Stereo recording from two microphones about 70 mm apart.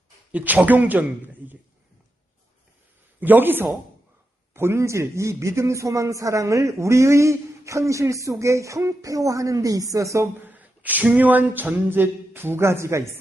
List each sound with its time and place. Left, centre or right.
0.3 s a man's voice: right
3.2 s a man's voice: right
4.6 s a man's voice: right
10.4 s a sound: right